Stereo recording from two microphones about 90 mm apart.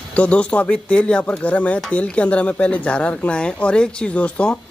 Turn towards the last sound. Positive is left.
turn(degrees=10)  # may be behind; listen again after turning